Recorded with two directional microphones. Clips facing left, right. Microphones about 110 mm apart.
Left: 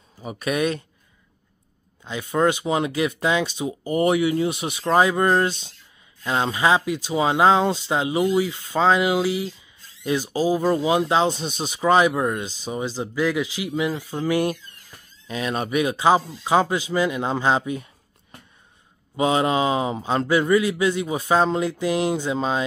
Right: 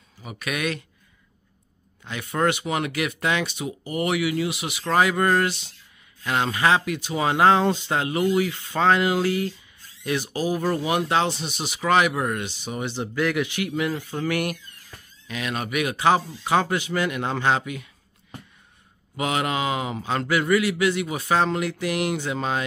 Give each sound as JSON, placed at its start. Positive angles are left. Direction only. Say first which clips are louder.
{"t": 0.2, "sound": "speech", "louder": "left 5 dB", "side_deg": 35}
{"t": 2.0, "sound": "a man's voice", "louder": "left 3 dB", "side_deg": 20}
{"t": 5.0, "sound": "a man's voice", "louder": "left 2 dB", "side_deg": 20}
{"t": 19.1, "sound": "a man's voice", "louder": "left 5 dB", "side_deg": 25}